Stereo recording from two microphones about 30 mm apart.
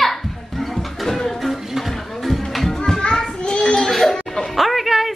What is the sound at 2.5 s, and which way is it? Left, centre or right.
Children playing, centre.